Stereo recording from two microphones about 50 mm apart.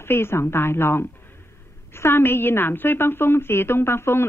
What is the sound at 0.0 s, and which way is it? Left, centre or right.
A woman's voice, left.